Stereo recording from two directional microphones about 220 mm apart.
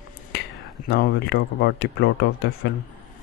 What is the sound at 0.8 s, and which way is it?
Speech, 50° left (ahead or behind).